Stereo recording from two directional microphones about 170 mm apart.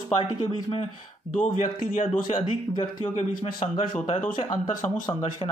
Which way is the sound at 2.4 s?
30° left (ahead or behind).